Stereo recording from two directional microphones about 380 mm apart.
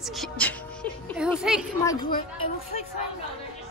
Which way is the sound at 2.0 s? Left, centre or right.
Centre.